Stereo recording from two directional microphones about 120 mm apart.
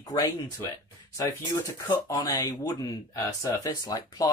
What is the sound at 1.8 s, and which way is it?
Speech, 35° left (ahead or behind).